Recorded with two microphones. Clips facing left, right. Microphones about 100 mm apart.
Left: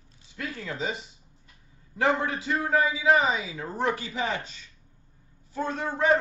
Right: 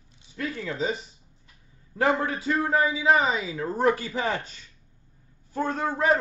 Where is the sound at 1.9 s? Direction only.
30° right (ahead or behind).